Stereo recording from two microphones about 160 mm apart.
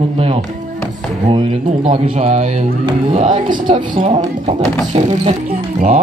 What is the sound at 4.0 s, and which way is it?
Speech, 50° right (ahead or behind).